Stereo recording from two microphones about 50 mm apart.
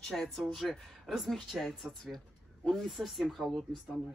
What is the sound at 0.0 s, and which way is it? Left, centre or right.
Speech, centre.